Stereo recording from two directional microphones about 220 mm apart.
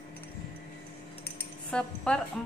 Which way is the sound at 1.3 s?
5° left (ahead or behind).